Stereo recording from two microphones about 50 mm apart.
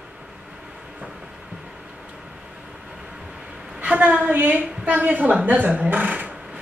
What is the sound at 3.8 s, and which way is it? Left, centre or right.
A woman's voice, right.